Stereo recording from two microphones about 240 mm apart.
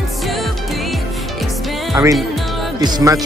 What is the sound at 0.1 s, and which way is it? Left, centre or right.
Music, centre.